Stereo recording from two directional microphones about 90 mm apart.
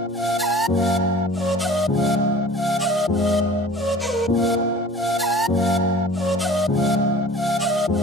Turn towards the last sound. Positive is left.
turn(degrees=0)  # may be behind; listen again after turning